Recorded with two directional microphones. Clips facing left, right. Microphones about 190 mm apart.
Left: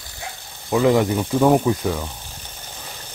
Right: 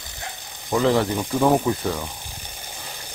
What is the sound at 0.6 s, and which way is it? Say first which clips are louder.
Speech: left 3 dB; 5° left (ahead or behind).